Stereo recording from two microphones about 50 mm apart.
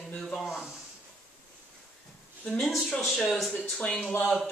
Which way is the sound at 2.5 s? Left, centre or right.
Centre.